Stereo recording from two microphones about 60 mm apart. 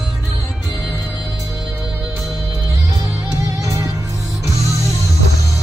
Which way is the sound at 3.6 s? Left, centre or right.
Right.